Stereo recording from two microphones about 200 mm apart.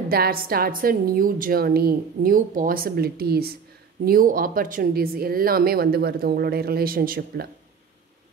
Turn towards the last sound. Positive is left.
turn(degrees=-45)  # may be behind; listen again after turning